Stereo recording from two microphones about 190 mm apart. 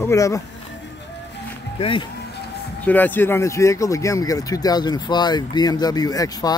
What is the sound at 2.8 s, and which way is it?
Speech, 10° left (ahead or behind).